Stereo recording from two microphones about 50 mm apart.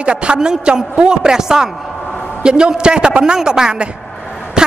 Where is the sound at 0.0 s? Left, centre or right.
Right.